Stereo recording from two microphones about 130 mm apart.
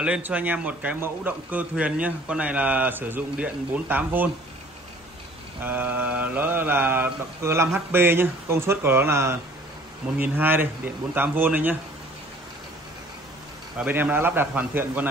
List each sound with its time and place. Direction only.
0.0 s a man's voice: 10° right (ahead or behind)
5.6 s a man's voice: 15° right (ahead or behind)
13.7 s a man's voice: 10° right (ahead or behind)